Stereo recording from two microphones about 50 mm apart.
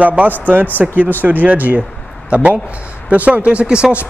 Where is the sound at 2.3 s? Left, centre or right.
Right.